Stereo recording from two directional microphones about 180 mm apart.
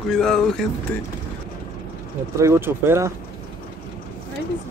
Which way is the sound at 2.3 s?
15° right (ahead or behind).